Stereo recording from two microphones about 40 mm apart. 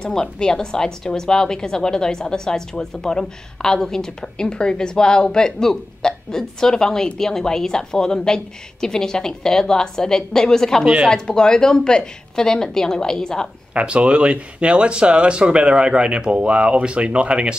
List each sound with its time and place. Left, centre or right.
0.0 s a woman's voice: centre
13.7 s speech: right